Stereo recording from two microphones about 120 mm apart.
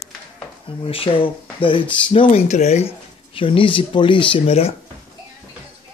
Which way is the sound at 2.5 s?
65° left (ahead or behind).